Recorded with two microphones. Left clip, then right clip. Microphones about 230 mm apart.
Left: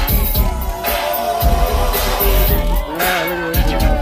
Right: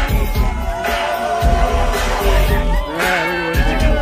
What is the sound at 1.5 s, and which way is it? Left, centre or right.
Music, left.